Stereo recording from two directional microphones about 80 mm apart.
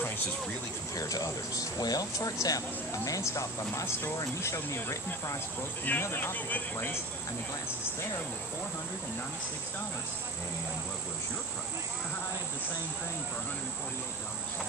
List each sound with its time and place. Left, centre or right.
0.9 s speech: left
5.9 s speech: left